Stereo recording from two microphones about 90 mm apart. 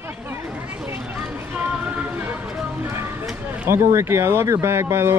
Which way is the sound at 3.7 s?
30° right (ahead or behind).